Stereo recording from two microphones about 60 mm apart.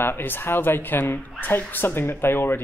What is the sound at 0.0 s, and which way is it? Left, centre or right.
Speech, left.